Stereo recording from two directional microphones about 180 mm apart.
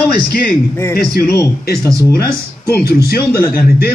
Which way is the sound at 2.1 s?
55° left (ahead or behind).